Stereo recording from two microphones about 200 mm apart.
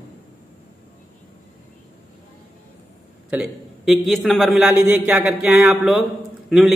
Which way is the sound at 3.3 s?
5° right (ahead or behind).